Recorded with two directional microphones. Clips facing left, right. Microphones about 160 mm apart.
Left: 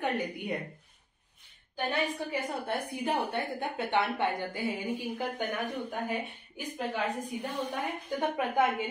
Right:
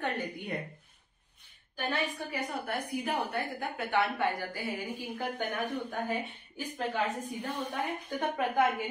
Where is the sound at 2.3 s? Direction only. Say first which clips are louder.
Left 2 dB; 30° left (ahead or behind).